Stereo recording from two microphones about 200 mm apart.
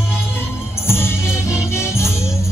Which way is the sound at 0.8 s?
10° left (ahead or behind).